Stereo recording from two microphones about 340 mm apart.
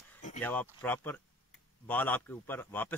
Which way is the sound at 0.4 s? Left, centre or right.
Centre.